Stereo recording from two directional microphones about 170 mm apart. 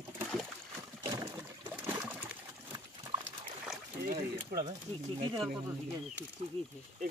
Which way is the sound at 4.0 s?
60° right (ahead or behind).